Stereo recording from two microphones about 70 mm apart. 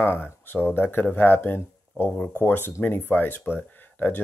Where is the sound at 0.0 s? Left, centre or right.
Left.